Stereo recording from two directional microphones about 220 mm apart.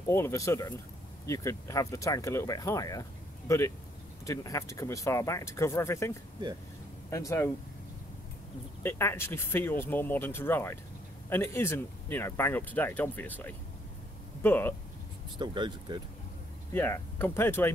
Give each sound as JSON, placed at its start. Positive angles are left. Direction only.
{"t": 0.0, "sound": "speech", "side_deg": 10}
{"t": 8.8, "sound": "speech", "side_deg": 10}
{"t": 15.3, "sound": "speech", "side_deg": -20}
{"t": 16.7, "sound": "speech", "side_deg": 10}